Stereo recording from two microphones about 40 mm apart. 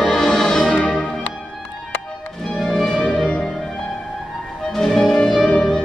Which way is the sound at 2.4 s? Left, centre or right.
Centre.